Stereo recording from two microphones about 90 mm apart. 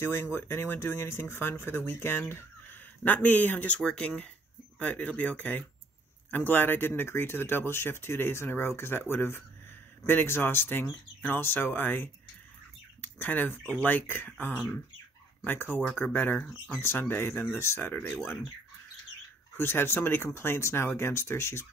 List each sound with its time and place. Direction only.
0.0 s speech: 30° left (ahead or behind)
19.5 s speech: 25° left (ahead or behind)